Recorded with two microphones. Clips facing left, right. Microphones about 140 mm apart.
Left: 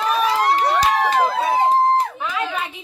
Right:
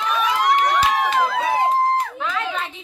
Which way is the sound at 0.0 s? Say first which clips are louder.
Left 2 dB; 35° left (ahead or behind).